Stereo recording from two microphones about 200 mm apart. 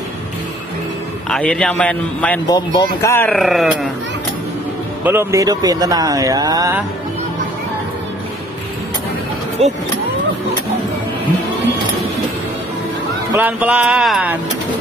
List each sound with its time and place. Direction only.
1.3 s a man's voice: 5° left (ahead or behind)
2.4 s speech: 20° left (ahead or behind)
3.3 s a man's voice: centre (ahead or behind)
5.0 s speech: 10° right (ahead or behind)
9.6 s speech: 30° right (ahead or behind)
13.3 s speech: 10° right (ahead or behind)